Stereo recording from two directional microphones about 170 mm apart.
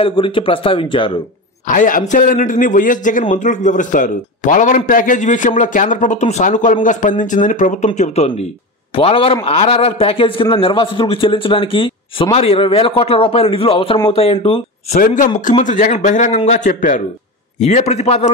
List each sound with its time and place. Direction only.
0.0 s a man's voice: 30° left (ahead or behind)
1.7 s a man's voice: 50° left (ahead or behind); by 15.0 s 35° left (ahead or behind)
15.0 s a man's voice: 50° left (ahead or behind)